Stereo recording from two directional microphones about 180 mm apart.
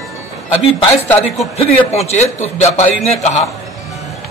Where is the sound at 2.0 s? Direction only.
35° left (ahead or behind).